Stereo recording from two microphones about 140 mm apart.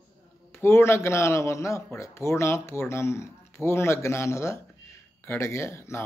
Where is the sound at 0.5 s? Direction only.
15° left (ahead or behind).